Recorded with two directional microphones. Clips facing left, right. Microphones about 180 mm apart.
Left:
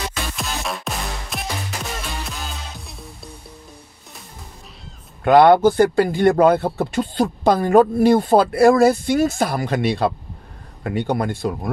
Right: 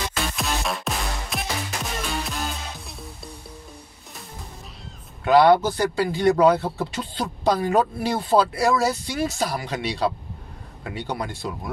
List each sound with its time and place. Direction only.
0.1 s music: centre (ahead or behind)
5.2 s speech: 55° left (ahead or behind)